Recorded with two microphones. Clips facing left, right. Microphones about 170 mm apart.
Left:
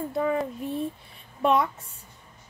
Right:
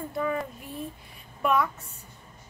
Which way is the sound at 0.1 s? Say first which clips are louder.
Left 3 dB; 25° left (ahead or behind).